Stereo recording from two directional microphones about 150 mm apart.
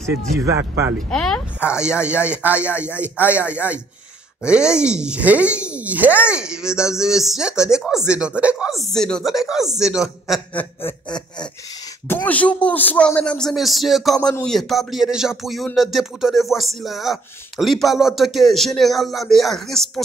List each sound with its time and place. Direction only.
0.5 s speech: 20° right (ahead or behind)
0.9 s speech: 5° left (ahead or behind)
10.5 s a man's voice: 15° left (ahead or behind)
12.1 s a man's voice: 10° left (ahead or behind)